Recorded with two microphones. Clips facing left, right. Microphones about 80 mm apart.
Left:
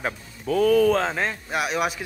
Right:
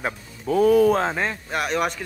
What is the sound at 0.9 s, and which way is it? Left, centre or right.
Speech, centre.